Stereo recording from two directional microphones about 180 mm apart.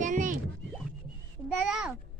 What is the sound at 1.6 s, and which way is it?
Speech, centre (ahead or behind).